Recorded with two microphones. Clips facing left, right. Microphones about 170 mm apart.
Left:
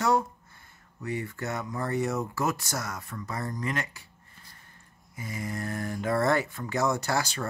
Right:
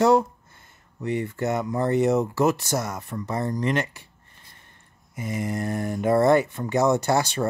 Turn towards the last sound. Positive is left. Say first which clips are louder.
# right 7 dB
turn(degrees=-25)  # may be behind; listen again after turning